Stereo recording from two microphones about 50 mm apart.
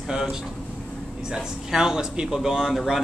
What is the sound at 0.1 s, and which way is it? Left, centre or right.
Speech, centre.